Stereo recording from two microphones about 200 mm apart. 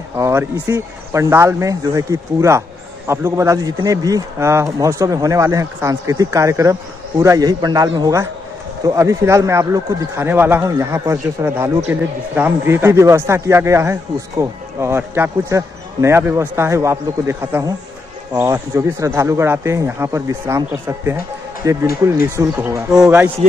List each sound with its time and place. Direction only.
0.2 s a man's voice: 15° right (ahead or behind)
22.8 s speech: 5° right (ahead or behind)